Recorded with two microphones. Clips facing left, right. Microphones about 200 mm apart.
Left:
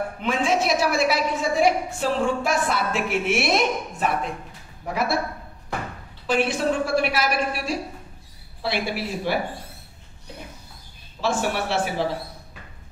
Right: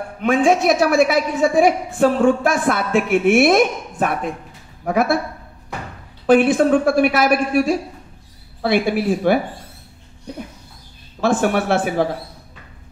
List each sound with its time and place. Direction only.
0.2 s a woman's voice: 50° right (ahead or behind)
6.2 s a woman's voice: 55° right (ahead or behind)
11.1 s a woman's voice: 55° right (ahead or behind)